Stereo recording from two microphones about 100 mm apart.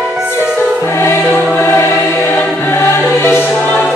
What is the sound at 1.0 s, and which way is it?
Music, 25° left (ahead or behind).